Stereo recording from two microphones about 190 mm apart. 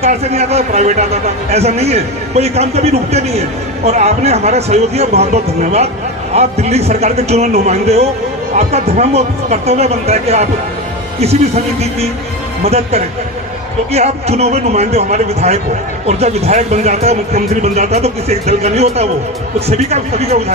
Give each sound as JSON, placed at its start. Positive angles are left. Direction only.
{"t": 0.0, "sound": "a man's voice", "side_deg": -35}